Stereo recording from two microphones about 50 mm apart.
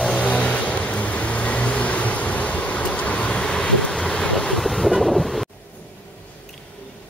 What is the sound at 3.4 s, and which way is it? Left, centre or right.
Wind noise, centre.